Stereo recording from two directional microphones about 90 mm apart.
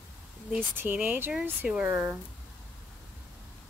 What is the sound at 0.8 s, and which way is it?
Speech, 20° right (ahead or behind).